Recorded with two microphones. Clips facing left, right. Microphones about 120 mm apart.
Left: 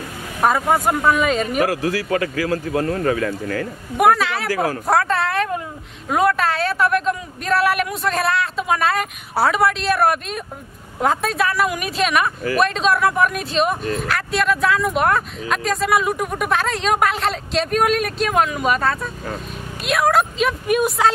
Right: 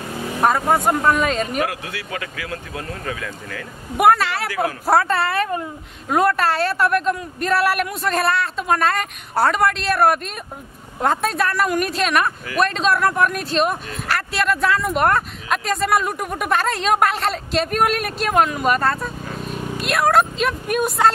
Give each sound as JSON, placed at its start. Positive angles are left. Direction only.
{"t": 0.4, "sound": "speech", "side_deg": 0}
{"t": 1.6, "sound": "speech", "side_deg": 40}
{"t": 3.9, "sound": "speech", "side_deg": 0}